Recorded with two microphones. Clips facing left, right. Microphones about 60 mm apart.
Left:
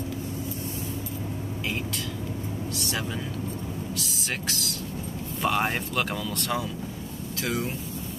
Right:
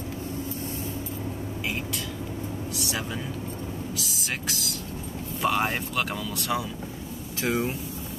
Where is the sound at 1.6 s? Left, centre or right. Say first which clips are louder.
Even; centre.